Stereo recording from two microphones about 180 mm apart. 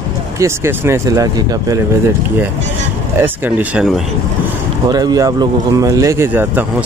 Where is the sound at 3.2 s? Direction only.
10° right (ahead or behind).